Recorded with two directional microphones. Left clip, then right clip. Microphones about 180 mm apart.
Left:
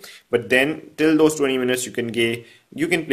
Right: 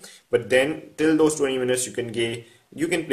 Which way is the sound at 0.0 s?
30° left (ahead or behind).